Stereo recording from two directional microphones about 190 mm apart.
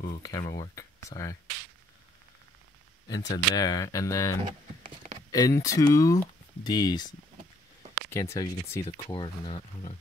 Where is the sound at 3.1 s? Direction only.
20° left (ahead or behind).